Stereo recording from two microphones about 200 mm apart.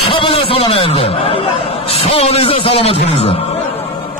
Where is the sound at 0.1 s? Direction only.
25° left (ahead or behind).